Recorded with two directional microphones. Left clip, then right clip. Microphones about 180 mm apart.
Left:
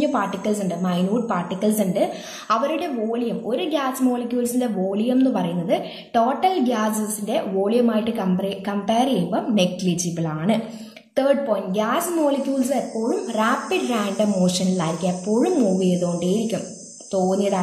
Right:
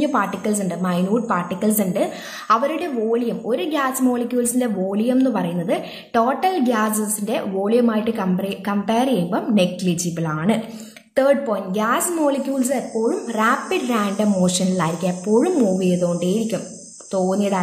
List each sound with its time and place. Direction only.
0.0 s a woman's voice: 30° right (ahead or behind)